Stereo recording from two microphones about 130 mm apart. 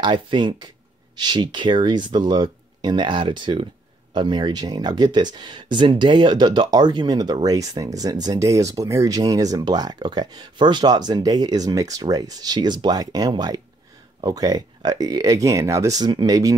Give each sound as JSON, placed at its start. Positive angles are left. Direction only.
{"t": 0.0, "sound": "speech", "side_deg": -35}